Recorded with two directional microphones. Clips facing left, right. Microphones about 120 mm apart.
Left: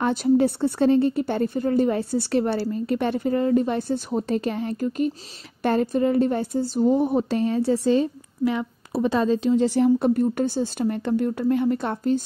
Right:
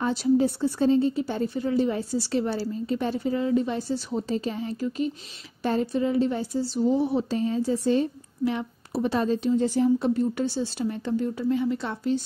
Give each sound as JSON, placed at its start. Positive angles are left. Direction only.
{"t": 0.0, "sound": "a woman's voice", "side_deg": 60}
{"t": 9.4, "sound": "a woman's voice", "side_deg": 90}
{"t": 9.8, "sound": "a woman's voice", "side_deg": 55}